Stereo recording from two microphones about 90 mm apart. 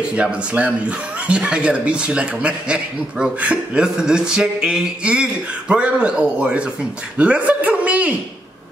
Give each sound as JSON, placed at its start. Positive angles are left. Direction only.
{"t": 0.1, "sound": "speech", "side_deg": -10}